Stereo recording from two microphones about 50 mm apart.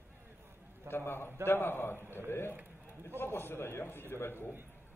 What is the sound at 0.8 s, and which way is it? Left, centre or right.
A man's voice, left.